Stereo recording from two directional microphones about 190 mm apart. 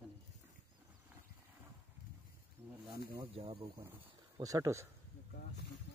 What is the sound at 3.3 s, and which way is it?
Speech, 30° right (ahead or behind).